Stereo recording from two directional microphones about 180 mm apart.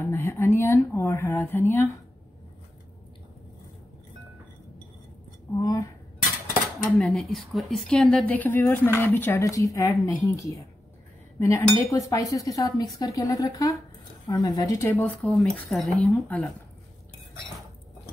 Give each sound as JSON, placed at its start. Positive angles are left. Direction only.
{"t": 0.0, "sound": "speech", "side_deg": 15}
{"t": 5.6, "sound": "cutlery", "side_deg": 20}
{"t": 6.8, "sound": "a woman's voice", "side_deg": 5}